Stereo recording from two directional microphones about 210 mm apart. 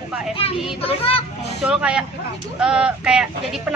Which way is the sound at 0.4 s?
25° left (ahead or behind).